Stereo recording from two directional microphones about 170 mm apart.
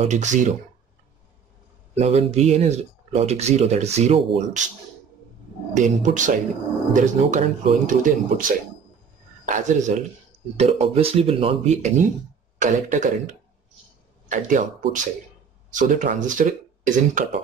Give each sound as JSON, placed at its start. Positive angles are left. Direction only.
{"t": 0.1, "sound": "speech", "side_deg": -45}
{"t": 2.0, "sound": "speech", "side_deg": -40}
{"t": 5.8, "sound": "speech", "side_deg": -45}
{"t": 9.5, "sound": "speech", "side_deg": -45}
{"t": 10.6, "sound": "speech", "side_deg": -35}